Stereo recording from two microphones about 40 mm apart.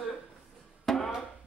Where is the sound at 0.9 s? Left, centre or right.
Centre.